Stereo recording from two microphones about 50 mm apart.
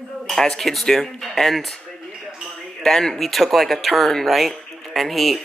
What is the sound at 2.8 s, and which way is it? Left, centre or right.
Speech, centre.